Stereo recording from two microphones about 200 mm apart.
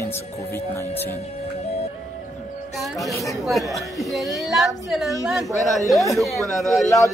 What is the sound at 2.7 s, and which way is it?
Speech, centre (ahead or behind).